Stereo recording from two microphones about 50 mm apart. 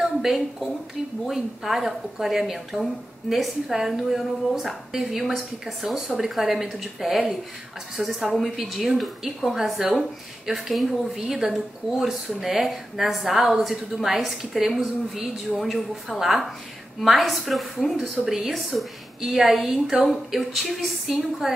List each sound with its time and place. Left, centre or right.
0.0 s a woman's voice: centre
9.8 s a woman's voice: centre
18.2 s a woman's voice: centre